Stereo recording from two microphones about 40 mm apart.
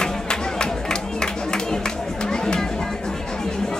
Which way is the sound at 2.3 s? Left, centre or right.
Left.